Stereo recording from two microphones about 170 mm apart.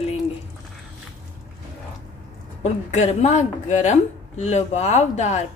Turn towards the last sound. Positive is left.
turn(degrees=40)  # may be behind; listen again after turning